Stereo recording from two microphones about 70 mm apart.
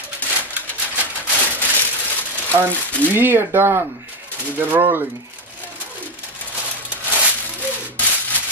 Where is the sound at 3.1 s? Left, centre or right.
Right.